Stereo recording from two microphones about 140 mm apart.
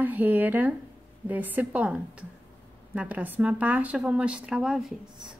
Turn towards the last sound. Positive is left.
turn(degrees=-5)  # may be behind; listen again after turning